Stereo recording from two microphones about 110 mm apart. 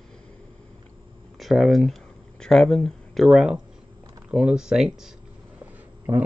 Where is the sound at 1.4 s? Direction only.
Centre (ahead or behind).